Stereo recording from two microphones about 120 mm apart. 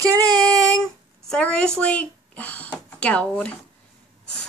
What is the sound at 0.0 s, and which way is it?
Child singing, 25° right (ahead or behind).